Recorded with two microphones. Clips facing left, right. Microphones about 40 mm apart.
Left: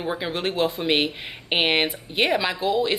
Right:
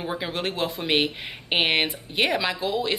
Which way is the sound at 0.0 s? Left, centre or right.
Centre.